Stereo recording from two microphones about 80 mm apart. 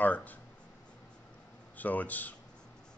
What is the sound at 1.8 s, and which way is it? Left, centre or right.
Speech, left.